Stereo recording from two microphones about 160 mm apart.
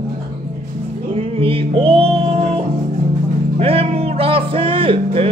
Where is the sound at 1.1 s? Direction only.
35° right (ahead or behind).